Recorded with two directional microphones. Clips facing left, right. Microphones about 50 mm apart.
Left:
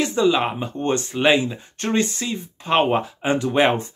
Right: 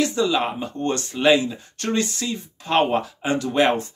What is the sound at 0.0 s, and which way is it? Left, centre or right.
Speech, left.